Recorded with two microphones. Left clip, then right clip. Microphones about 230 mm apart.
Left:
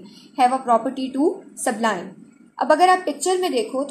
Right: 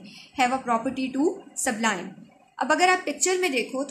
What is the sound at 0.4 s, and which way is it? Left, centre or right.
A woman's voice, right.